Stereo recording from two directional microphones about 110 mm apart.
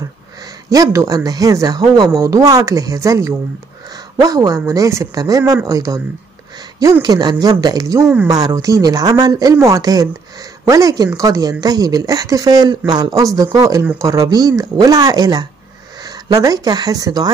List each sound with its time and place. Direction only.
0.7 s a woman's voice: 30° right (ahead or behind)